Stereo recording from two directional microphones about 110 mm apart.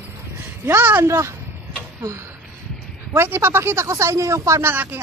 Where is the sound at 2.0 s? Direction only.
25° right (ahead or behind).